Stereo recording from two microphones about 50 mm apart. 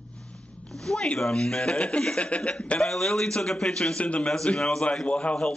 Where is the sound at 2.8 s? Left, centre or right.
Centre.